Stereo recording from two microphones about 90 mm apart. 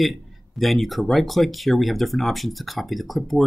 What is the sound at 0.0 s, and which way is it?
Speech, centre (ahead or behind).